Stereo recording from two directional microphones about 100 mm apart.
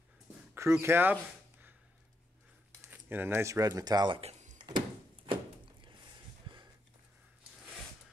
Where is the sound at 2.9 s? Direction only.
20° right (ahead or behind); by 4.1 s 45° right (ahead or behind).